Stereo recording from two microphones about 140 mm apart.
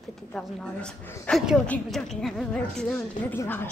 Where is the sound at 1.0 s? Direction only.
15° left (ahead or behind).